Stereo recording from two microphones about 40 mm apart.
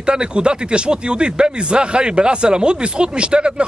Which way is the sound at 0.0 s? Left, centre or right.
Right.